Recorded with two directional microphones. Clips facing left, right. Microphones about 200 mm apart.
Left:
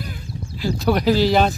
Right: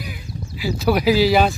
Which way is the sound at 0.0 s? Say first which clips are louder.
Even; 10° right (ahead or behind).